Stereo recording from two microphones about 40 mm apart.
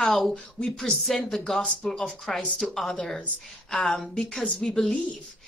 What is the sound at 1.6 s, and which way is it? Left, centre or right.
Speech, left.